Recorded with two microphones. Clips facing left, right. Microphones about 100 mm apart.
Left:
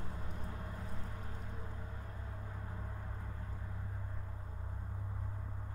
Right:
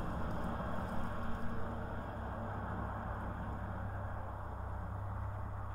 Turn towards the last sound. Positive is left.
turn(degrees=-45)  # may be behind; listen again after turning